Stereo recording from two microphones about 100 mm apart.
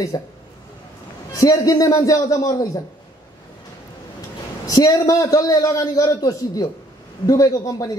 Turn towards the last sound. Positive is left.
turn(degrees=40)  # may be behind; listen again after turning